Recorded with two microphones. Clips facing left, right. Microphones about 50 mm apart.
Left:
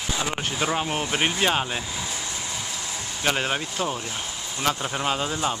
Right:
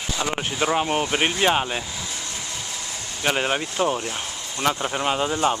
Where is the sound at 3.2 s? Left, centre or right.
Centre.